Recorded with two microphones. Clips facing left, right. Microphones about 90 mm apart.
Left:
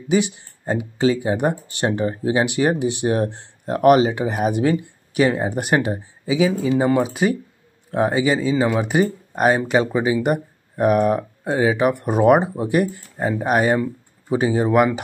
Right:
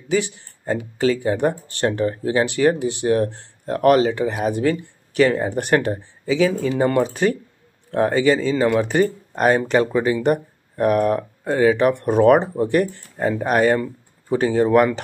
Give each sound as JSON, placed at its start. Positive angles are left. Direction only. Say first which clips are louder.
{"t": 0.1, "sound": "speech", "louder": "left 2 dB", "side_deg": 20}